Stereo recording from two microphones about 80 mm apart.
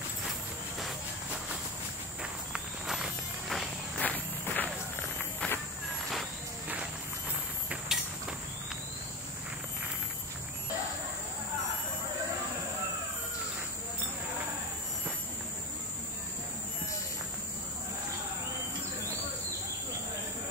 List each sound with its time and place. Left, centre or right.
2.5 s walk: centre
4.0 s walk: left
7.7 s a sound: centre